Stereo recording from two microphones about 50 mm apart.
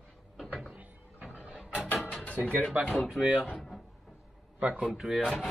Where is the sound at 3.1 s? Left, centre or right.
Centre.